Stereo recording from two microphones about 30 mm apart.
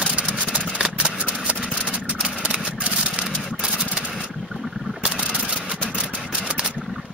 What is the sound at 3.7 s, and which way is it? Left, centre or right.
Vehicle, right.